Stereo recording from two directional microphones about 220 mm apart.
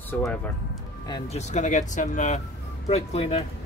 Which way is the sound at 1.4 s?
30° left (ahead or behind).